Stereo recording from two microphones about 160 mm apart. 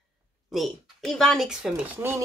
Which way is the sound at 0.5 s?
Centre (ahead or behind).